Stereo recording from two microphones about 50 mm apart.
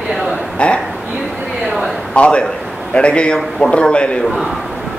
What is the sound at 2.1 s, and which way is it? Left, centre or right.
A man's voice, left.